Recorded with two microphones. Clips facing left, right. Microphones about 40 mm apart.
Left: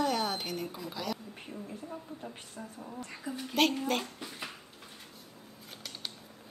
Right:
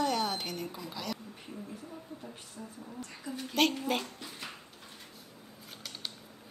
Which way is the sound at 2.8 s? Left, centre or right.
Left.